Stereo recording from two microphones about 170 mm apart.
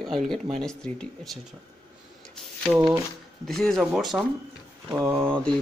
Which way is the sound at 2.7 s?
20° right (ahead or behind).